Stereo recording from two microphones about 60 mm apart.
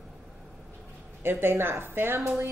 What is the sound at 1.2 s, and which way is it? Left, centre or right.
A woman's voice, right.